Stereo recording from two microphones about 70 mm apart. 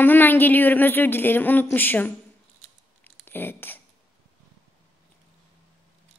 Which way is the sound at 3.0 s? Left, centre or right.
Left.